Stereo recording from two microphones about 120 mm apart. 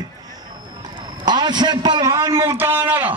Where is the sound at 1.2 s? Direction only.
35° right (ahead or behind).